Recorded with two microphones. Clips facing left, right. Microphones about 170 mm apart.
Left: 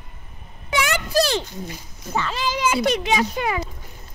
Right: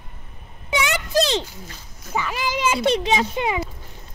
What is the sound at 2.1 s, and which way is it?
A child's voice, 10° right (ahead or behind).